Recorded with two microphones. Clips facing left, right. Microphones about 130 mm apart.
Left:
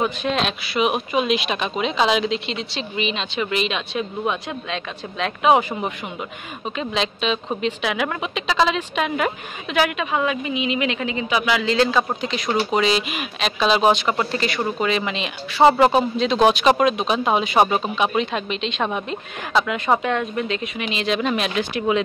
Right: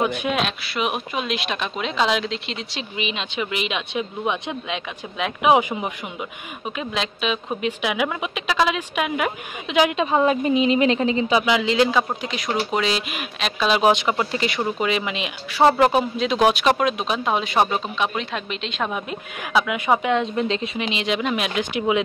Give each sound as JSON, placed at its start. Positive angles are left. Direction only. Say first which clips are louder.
{"t": 0.0, "sound": "a woman's voice", "louder": "even", "side_deg": -15}
{"t": 0.4, "sound": "a woman's voice", "louder": "left 3 dB", "side_deg": 0}
{"t": 3.0, "sound": "a woman's voice", "louder": "left 2 dB", "side_deg": -10}
{"t": 9.8, "sound": "a woman's voice", "louder": "right 3 dB", "side_deg": -25}